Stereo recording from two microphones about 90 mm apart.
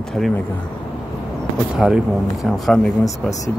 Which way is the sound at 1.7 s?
10° right (ahead or behind).